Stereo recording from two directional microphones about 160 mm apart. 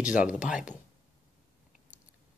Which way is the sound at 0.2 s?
5° right (ahead or behind).